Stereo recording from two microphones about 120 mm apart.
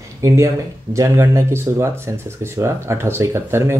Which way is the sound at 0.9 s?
25° right (ahead or behind).